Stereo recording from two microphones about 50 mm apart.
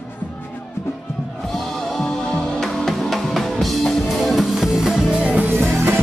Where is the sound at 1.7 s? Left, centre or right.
Centre.